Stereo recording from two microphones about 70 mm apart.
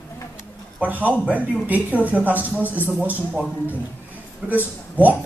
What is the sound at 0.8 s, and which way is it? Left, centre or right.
Speech, right.